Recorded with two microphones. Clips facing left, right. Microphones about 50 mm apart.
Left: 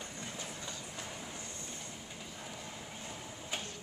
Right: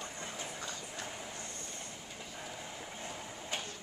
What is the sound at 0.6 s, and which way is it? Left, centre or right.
Train, right.